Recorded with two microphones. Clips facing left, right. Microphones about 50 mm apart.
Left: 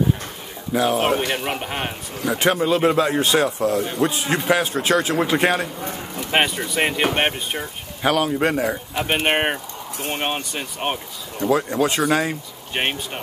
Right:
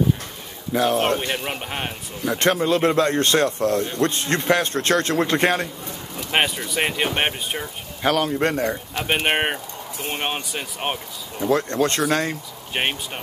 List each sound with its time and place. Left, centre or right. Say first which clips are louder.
0.7 s a man's voice: left 1 dB; centre
6.1 s a sound: left 1 dB; centre
6.7 s a man's voice: left 2 dB; centre